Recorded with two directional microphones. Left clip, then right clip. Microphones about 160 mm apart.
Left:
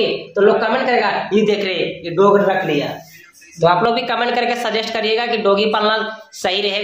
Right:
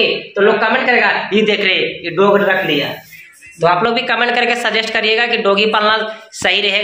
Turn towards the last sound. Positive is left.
turn(degrees=-5)  # may be behind; listen again after turning